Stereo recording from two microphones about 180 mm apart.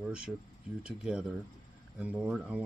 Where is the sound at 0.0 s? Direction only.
5° right (ahead or behind).